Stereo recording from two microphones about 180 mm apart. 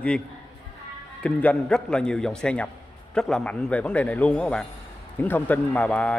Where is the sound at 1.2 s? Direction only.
5° left (ahead or behind).